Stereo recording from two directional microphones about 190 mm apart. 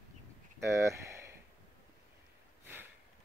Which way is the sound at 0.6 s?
15° right (ahead or behind).